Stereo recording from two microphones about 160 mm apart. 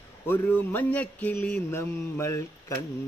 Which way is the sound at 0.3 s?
15° left (ahead or behind).